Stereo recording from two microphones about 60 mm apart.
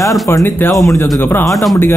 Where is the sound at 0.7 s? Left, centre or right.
Left.